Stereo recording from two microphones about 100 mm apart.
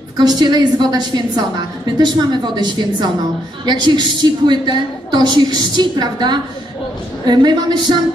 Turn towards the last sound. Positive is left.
turn(degrees=-45)  # may be behind; listen again after turning